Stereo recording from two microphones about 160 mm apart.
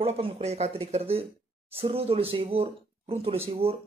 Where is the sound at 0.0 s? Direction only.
40° right (ahead or behind).